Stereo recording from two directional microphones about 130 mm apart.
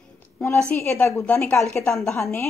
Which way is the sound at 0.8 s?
20° left (ahead or behind).